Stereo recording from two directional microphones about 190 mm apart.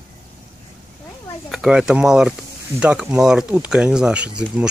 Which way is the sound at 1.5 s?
Centre (ahead or behind).